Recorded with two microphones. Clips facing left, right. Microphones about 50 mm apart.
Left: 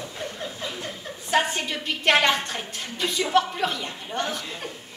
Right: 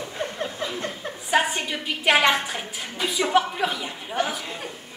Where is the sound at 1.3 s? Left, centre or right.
Centre.